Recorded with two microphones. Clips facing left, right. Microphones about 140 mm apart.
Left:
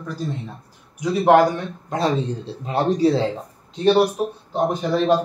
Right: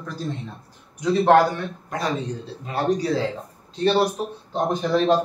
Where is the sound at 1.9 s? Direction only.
25° left (ahead or behind).